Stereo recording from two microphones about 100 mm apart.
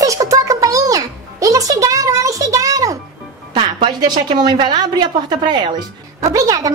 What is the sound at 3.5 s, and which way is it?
A woman's voice, 55° right (ahead or behind).